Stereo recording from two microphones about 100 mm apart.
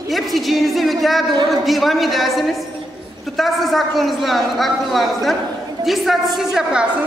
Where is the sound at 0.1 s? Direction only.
Centre (ahead or behind).